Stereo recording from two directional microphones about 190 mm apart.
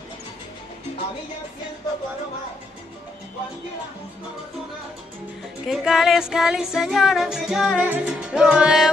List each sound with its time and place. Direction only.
5.7 s music: centre (ahead or behind)